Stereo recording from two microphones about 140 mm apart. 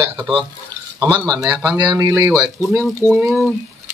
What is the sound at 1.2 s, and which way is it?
Speech, 25° right (ahead or behind).